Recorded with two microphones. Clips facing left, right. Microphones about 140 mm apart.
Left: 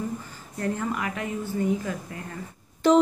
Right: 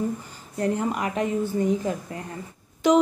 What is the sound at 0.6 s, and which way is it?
Speech, 20° right (ahead or behind).